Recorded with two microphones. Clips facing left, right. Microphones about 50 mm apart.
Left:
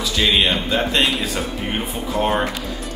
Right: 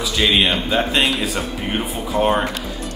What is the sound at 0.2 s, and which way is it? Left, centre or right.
Speech, centre.